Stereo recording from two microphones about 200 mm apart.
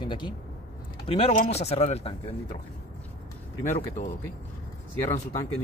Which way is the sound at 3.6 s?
40° left (ahead or behind).